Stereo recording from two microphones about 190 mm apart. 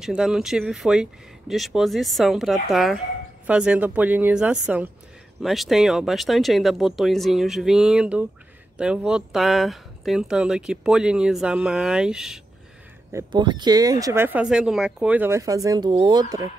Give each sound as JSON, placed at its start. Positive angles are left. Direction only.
{"t": 0.0, "sound": "speech", "side_deg": -5}
{"t": 13.1, "sound": "speech", "side_deg": -25}